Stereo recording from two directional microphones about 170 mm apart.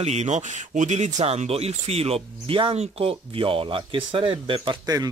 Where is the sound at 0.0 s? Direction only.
40° right (ahead or behind).